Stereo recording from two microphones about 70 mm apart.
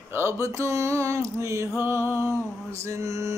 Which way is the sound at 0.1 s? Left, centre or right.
Right.